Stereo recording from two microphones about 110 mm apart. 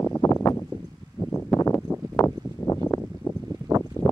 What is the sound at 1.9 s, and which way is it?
Clip-clop, 25° right (ahead or behind).